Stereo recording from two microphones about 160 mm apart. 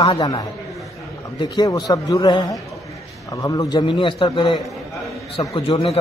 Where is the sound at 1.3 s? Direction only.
25° left (ahead or behind).